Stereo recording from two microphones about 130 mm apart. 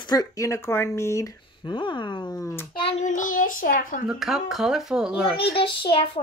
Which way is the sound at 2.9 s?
70° left (ahead or behind).